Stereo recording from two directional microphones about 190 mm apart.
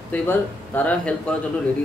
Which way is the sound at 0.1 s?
10° left (ahead or behind).